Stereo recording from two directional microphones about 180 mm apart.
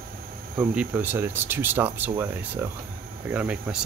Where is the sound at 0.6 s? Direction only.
10° right (ahead or behind).